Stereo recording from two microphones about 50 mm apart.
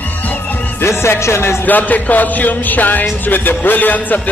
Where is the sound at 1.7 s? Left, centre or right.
Left.